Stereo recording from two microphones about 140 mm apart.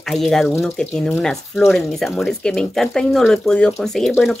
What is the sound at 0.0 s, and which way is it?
Speech, centre (ahead or behind).